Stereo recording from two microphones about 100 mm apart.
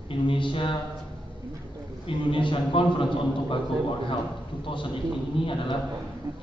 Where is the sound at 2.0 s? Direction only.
60° left (ahead or behind).